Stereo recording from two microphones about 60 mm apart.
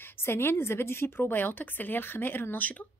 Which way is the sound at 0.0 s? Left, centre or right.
Left.